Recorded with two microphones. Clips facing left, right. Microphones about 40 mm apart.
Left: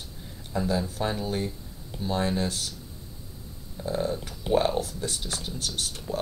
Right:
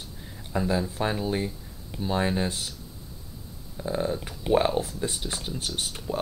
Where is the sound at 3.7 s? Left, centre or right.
Centre.